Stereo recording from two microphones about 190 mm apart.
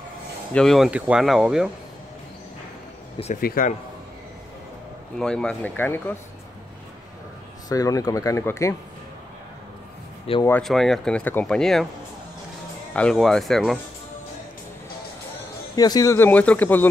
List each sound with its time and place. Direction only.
0.5 s speech: 5° left (ahead or behind)
3.3 s speech: 50° left (ahead or behind)
5.2 s speech: 5° left (ahead or behind)
7.7 s speech: 20° left (ahead or behind)
10.3 s speech: 30° left (ahead or behind)
10.6 s speech: centre (ahead or behind)
12.9 s speech: 5° left (ahead or behind)
15.7 s speech: 20° left (ahead or behind)